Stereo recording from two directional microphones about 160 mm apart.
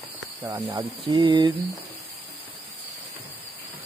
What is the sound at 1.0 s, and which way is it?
Speech, 30° right (ahead or behind).